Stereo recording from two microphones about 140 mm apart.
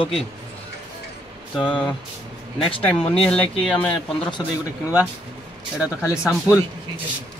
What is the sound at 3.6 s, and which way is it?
Speech, 5° left (ahead or behind).